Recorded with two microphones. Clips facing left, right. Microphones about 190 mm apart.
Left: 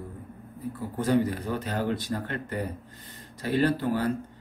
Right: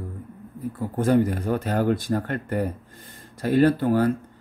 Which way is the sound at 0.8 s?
50° right (ahead or behind).